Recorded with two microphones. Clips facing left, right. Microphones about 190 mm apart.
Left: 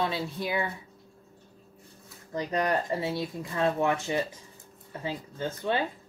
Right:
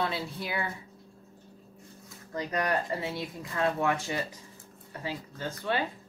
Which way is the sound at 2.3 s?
25° left (ahead or behind).